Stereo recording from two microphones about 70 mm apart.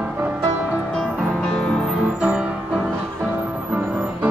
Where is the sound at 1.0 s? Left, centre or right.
Centre.